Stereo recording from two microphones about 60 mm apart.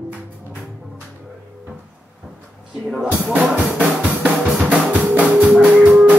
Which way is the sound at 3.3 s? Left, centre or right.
Right.